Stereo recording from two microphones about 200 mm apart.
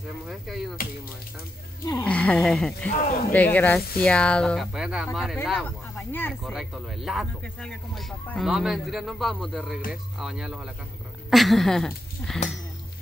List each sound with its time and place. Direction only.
0.3 s speech: centre (ahead or behind)
2.0 s speech: 5° left (ahead or behind)
2.9 s speech: 45° left (ahead or behind)
3.3 s speech: 10° left (ahead or behind)